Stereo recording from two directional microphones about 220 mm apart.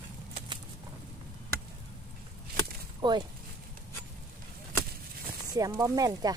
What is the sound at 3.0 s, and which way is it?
Speech, 20° right (ahead or behind).